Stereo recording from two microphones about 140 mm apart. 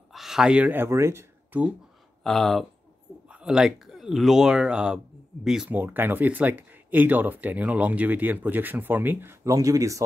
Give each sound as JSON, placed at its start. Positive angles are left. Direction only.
{"t": 0.1, "sound": "speech", "side_deg": 0}
{"t": 2.2, "sound": "speech", "side_deg": 0}